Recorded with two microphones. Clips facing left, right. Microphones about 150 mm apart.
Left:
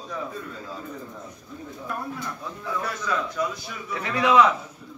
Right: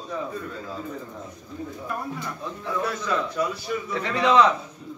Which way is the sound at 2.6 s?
Centre (ahead or behind).